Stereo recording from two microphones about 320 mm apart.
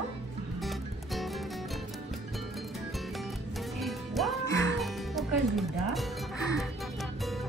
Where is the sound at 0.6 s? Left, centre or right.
Centre.